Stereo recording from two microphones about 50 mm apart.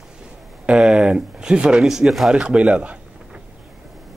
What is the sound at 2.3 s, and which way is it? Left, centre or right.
Speech, right.